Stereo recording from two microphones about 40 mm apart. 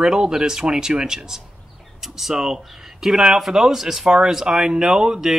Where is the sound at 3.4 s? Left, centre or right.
Centre.